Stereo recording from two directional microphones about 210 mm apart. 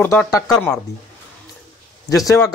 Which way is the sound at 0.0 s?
10° left (ahead or behind).